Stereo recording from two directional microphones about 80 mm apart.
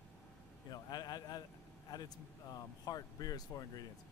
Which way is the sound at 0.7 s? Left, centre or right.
Left.